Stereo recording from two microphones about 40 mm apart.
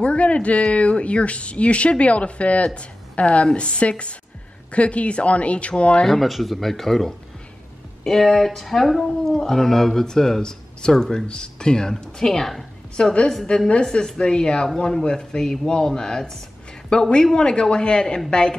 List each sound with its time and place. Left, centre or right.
0.0 s speech: left
6.0 s speech: centre
12.9 s speech: left